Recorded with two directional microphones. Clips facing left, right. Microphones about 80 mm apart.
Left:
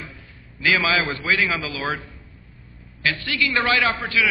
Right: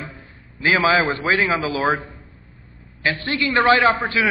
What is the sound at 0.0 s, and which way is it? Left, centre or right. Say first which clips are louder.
A man's voice: right 4 dB; right.